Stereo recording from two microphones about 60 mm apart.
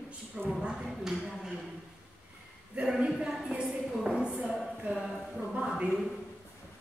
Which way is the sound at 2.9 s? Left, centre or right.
Centre.